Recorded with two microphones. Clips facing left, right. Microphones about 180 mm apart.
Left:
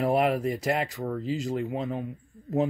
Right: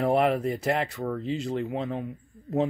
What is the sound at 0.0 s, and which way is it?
Speech, centre (ahead or behind).